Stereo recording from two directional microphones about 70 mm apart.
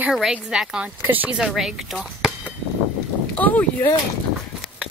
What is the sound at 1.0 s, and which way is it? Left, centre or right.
Speech, right.